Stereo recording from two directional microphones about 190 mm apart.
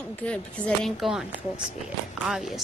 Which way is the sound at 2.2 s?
Centre (ahead or behind).